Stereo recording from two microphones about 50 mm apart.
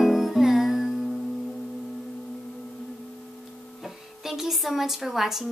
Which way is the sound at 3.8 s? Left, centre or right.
Centre.